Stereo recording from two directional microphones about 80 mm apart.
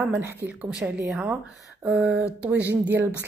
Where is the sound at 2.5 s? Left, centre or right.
Right.